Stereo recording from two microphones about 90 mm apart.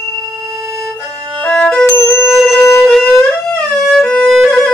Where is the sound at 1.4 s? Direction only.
10° left (ahead or behind).